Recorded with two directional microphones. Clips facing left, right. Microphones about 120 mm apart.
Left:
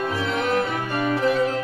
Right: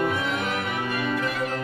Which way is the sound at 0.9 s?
30° left (ahead or behind).